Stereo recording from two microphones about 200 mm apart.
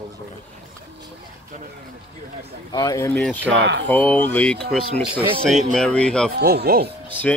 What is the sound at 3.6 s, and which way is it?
Speech, 60° right (ahead or behind).